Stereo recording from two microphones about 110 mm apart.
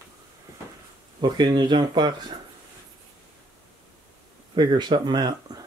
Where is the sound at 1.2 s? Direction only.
40° right (ahead or behind).